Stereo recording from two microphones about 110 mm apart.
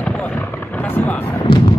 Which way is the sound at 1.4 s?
40° left (ahead or behind).